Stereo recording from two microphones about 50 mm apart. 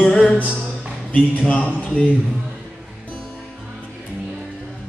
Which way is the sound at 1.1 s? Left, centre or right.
Left.